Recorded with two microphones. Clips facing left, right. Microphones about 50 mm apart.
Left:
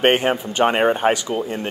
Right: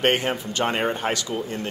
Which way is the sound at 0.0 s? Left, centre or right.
Left.